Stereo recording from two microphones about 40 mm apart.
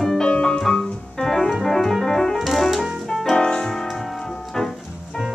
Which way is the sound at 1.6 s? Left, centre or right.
Centre.